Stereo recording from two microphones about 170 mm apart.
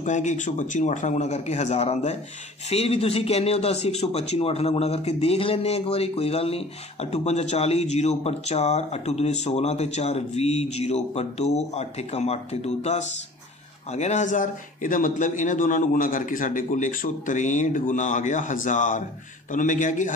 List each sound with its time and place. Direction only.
0.0 s a man's voice: 45° left (ahead or behind)